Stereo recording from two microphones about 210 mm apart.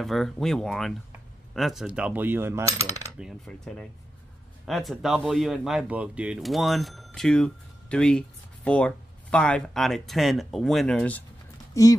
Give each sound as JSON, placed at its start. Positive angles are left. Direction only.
{"t": 0.0, "sound": "speech", "side_deg": 0}
{"t": 1.5, "sound": "coin", "side_deg": 0}
{"t": 3.2, "sound": "speech", "side_deg": 0}
{"t": 11.7, "sound": "speech", "side_deg": 15}